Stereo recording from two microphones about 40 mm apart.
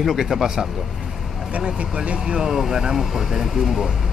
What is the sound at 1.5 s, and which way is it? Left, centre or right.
Speech, right.